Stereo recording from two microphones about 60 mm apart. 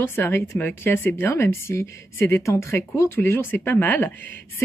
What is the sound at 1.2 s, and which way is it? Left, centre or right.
Speech, left.